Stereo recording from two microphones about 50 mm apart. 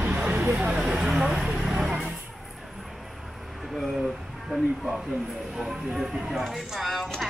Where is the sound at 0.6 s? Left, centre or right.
Right.